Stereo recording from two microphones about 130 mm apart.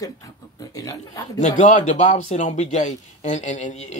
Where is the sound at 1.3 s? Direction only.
65° left (ahead or behind).